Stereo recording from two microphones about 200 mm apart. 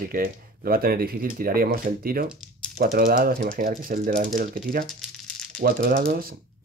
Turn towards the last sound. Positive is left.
turn(degrees=-45)  # may be behind; listen again after turning